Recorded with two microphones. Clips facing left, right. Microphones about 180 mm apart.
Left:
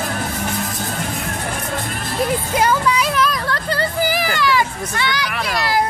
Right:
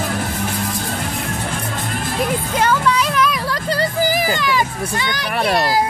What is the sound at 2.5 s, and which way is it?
Music, 10° left (ahead or behind).